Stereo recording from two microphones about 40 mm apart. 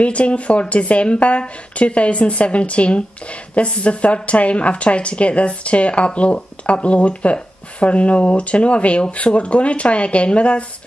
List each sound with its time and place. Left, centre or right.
0.0 s speech: left